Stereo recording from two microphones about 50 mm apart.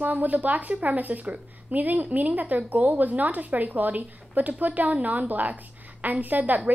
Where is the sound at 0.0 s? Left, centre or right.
Right.